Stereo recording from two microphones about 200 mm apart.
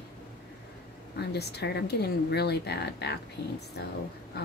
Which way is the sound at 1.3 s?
55° left (ahead or behind).